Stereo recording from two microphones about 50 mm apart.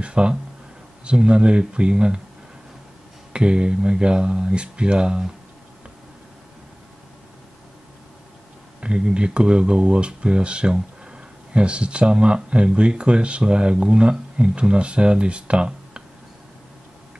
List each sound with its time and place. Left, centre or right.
0.0 s a sound: right
1.0 s speech: centre
3.3 s speech: centre
8.8 s speech: centre